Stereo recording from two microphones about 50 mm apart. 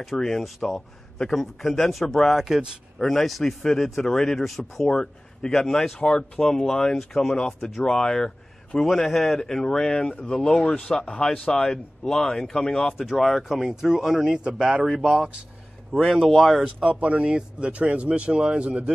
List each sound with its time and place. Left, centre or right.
0.0 s a man's voice: centre
2.3 s speech: centre
3.0 s a man's voice: centre; by 15.4 s right
15.9 s a man's voice: centre
16.9 s speech: right